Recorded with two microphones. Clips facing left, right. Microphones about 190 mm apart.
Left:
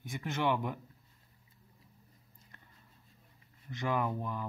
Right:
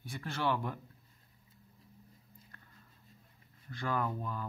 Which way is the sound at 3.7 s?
15° left (ahead or behind).